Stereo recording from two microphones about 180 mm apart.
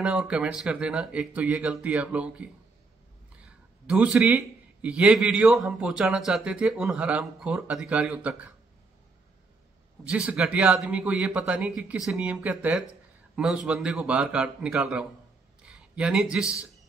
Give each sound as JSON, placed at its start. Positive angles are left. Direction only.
{"t": 0.0, "sound": "a man's voice", "side_deg": -5}
{"t": 3.4, "sound": "a sound", "side_deg": -5}
{"t": 4.8, "sound": "a man's voice", "side_deg": -5}
{"t": 10.0, "sound": "a man's voice", "side_deg": -5}